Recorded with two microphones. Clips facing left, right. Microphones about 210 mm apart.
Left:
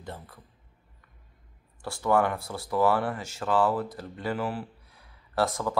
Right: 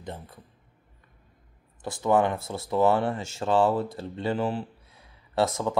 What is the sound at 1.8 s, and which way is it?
Speech, 20° right (ahead or behind).